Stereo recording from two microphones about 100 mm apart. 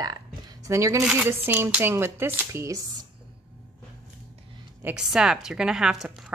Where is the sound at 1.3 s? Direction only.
20° right (ahead or behind); by 3.0 s 40° right (ahead or behind).